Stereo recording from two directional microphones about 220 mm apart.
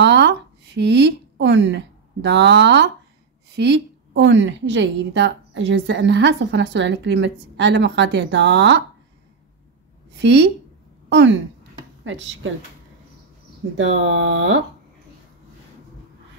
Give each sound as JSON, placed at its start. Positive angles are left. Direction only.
{"t": 0.0, "sound": "a sound", "side_deg": -50}
{"t": 3.5, "sound": "a woman's voice", "side_deg": -50}
{"t": 10.1, "sound": "a woman's voice", "side_deg": -50}
{"t": 13.7, "sound": "speech", "side_deg": -60}